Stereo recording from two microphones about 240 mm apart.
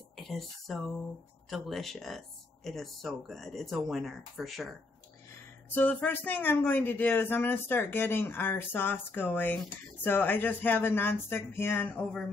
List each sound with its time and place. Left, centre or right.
1.5 s speech: centre
5.8 s speech: centre